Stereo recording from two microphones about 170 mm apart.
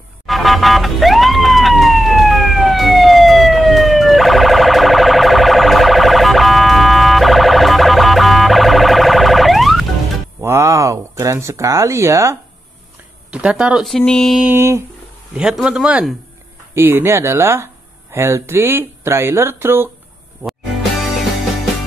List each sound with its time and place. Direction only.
0.3 s emergency vehicle: centre (ahead or behind)
10.4 s a sound: 15° right (ahead or behind)
13.3 s speech: 5° right (ahead or behind)
14.5 s speech: 15° right (ahead or behind)
15.3 s speech: 5° right (ahead or behind)